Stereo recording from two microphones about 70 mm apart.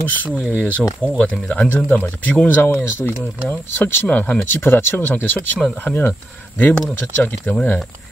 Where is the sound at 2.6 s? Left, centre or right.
Left.